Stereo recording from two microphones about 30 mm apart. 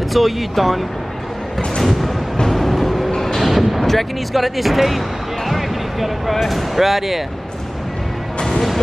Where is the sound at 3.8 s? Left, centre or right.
Centre.